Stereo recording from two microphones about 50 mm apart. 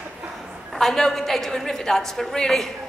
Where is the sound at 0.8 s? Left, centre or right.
Centre.